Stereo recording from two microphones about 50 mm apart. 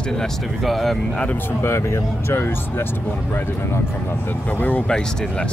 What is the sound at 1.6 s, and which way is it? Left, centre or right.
Speech, left.